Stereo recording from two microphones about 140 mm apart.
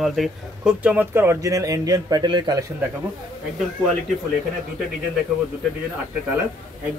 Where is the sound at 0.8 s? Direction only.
10° right (ahead or behind); by 2.6 s 30° right (ahead or behind).